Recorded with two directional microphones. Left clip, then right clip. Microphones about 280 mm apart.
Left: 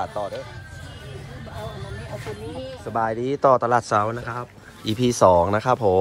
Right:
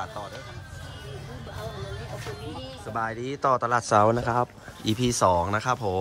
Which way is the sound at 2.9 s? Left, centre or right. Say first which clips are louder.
Left 7 dB; centre.